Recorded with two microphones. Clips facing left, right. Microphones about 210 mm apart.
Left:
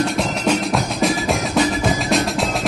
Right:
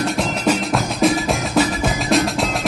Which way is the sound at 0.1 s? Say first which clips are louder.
Even; centre (ahead or behind).